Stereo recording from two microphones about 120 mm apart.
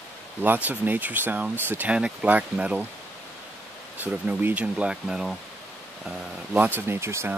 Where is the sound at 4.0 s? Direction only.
15° right (ahead or behind).